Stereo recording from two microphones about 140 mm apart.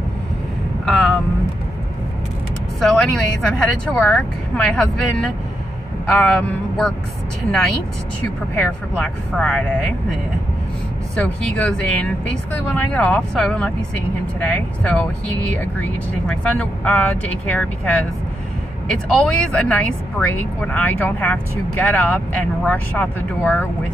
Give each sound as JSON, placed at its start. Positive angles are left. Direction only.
{"t": 0.8, "sound": "vehicle", "side_deg": 0}
{"t": 2.8, "sound": "a woman's voice", "side_deg": 5}
{"t": 8.5, "sound": "a woman's voice", "side_deg": 10}
{"t": 11.1, "sound": "a woman's voice", "side_deg": 5}